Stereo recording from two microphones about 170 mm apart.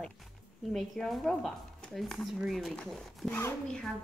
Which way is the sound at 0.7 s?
Centre (ahead or behind).